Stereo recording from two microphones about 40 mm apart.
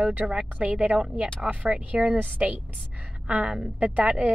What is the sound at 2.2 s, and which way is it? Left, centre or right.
Speech, right.